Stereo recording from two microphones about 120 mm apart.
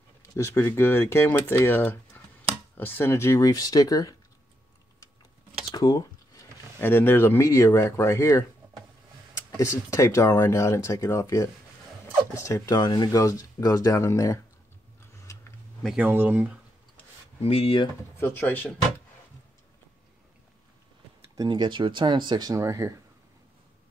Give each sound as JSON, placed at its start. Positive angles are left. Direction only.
{"t": 0.4, "sound": "speech", "side_deg": 20}
{"t": 5.8, "sound": "a sound", "side_deg": 30}
{"t": 6.8, "sound": "speech", "side_deg": 20}
{"t": 12.4, "sound": "speech", "side_deg": 30}
{"t": 15.3, "sound": "a sound", "side_deg": 25}
{"t": 16.0, "sound": "speech", "side_deg": -15}
{"t": 17.4, "sound": "speech", "side_deg": 55}
{"t": 18.2, "sound": "speech", "side_deg": 15}
{"t": 21.4, "sound": "speech", "side_deg": -40}